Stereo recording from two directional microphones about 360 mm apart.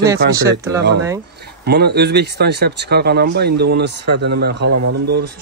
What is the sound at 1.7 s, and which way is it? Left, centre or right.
Speech, right.